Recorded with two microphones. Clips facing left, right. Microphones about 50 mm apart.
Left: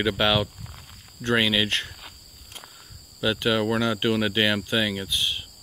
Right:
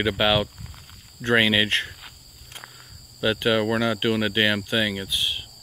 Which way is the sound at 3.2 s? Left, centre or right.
Centre.